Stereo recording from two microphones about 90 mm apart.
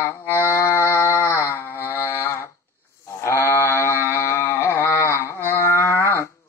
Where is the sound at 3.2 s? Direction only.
30° left (ahead or behind).